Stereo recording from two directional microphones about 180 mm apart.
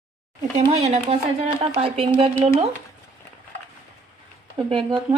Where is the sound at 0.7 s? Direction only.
35° right (ahead or behind).